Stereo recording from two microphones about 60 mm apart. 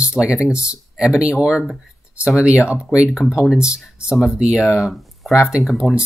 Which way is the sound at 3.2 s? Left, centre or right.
Centre.